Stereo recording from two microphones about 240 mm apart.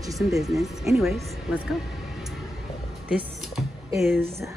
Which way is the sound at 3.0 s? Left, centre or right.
Centre.